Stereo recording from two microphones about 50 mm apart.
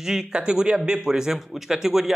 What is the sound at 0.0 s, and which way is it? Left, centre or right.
Speech, centre.